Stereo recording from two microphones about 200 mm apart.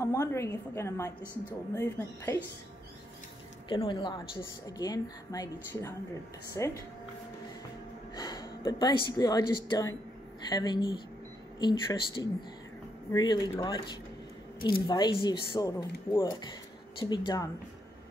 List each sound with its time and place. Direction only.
0.0 s a woman's voice: 15° left (ahead or behind)
3.6 s speech: 25° left (ahead or behind)
8.2 s a woman's voice: 20° left (ahead or behind)